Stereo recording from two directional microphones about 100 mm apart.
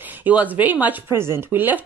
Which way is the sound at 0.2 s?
15° right (ahead or behind).